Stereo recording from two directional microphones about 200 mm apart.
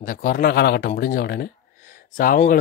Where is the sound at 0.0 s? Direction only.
45° left (ahead or behind).